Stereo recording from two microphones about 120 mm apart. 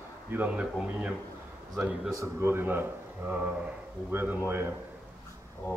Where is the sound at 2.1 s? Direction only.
20° right (ahead or behind).